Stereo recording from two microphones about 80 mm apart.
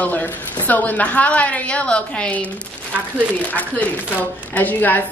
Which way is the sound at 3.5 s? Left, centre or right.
Left.